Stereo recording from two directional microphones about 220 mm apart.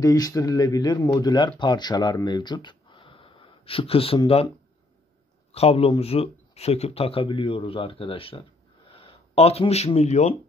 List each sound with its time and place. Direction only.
0.0 s speech: 15° left (ahead or behind)
5.5 s speech: 25° left (ahead or behind)